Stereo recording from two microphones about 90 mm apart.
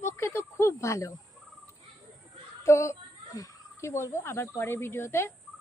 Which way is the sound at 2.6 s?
30° left (ahead or behind).